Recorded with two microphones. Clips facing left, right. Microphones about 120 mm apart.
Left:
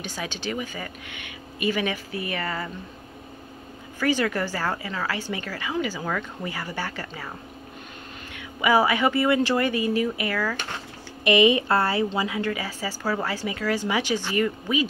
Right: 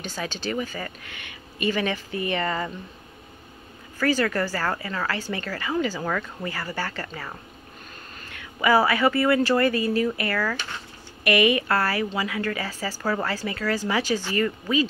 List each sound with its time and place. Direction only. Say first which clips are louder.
0.0 s a woman's voice: right 1 dB; 10° left (ahead or behind)
4.0 s a woman's voice: right 1 dB; 15° left (ahead or behind)
11.2 s a woman's voice: left 2 dB; 20° left (ahead or behind)
12.4 s a woman's voice: even; 10° left (ahead or behind)